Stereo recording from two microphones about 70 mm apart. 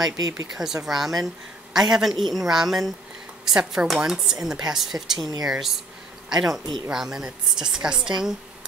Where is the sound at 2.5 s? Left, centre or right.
Centre.